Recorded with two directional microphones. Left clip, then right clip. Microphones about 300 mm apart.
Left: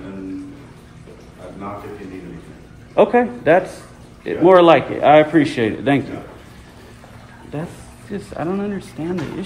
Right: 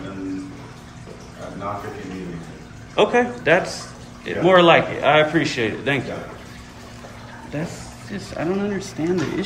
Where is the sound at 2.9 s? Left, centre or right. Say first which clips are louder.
Left 3 dB; centre.